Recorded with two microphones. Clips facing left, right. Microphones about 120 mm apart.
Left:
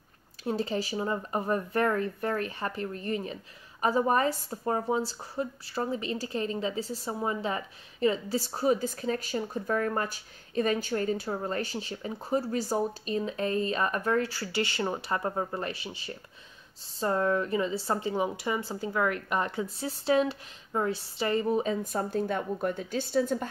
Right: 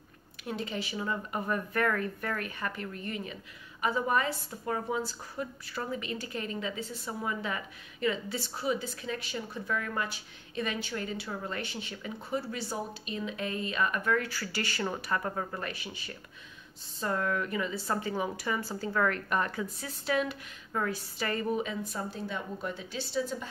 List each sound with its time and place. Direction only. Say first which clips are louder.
0.4 s a woman's voice: left 6 dB; 35° left (ahead or behind)
21.8 s speech: left 7 dB; 50° left (ahead or behind)